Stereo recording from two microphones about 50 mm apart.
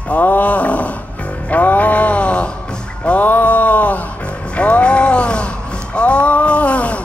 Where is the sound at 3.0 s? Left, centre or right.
Left.